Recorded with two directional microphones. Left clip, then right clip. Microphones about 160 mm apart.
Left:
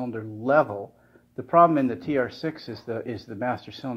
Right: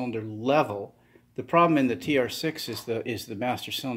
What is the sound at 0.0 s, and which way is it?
Speech, 25° right (ahead or behind).